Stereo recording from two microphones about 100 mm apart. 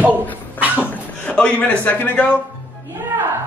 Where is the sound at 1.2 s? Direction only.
10° left (ahead or behind).